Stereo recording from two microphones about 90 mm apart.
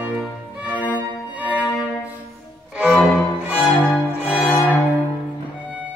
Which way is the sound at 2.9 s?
10° left (ahead or behind).